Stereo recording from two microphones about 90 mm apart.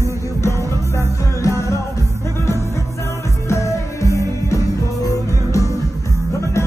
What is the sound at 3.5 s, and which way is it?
Music, 35° left (ahead or behind).